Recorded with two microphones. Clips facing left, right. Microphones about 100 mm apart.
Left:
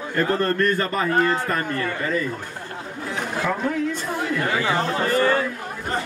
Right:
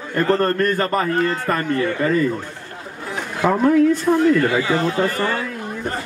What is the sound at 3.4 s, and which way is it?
Speech, 40° right (ahead or behind).